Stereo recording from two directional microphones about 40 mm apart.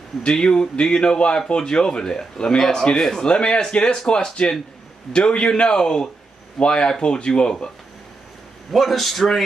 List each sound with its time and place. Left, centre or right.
0.3 s speech: centre
8.7 s a man's voice: centre